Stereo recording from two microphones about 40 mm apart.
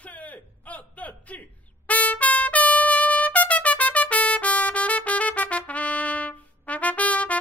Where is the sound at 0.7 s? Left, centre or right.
Left.